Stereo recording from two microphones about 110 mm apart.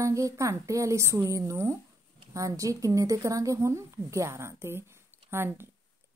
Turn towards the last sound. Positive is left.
turn(degrees=-20)  # may be behind; listen again after turning